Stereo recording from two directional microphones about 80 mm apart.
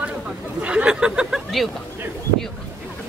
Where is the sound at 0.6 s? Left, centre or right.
Centre.